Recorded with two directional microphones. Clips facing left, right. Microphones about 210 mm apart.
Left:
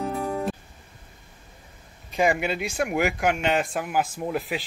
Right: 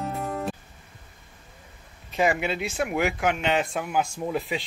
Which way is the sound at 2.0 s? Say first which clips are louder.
Left 1 dB; centre (ahead or behind).